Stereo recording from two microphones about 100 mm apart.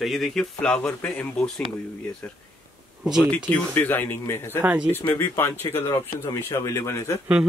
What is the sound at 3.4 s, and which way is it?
Speech, 20° left (ahead or behind).